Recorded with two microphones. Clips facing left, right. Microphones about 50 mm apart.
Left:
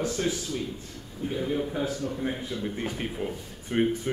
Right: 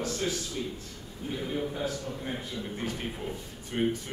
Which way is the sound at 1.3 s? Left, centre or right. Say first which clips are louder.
Left 4 dB; centre.